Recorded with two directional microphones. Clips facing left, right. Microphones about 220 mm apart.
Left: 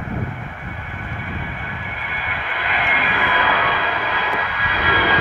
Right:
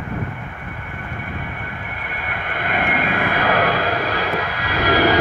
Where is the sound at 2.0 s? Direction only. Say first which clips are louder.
Right 1 dB; 55° right (ahead or behind).